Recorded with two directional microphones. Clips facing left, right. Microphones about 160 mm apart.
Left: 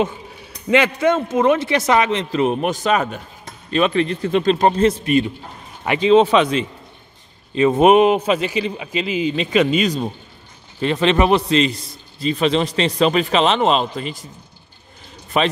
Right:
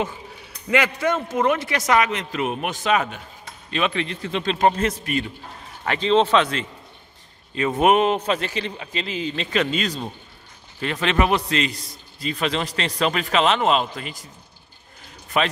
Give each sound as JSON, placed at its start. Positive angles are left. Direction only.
{"t": 0.7, "sound": "a man's voice", "side_deg": 25}
{"t": 15.3, "sound": "a man's voice", "side_deg": 25}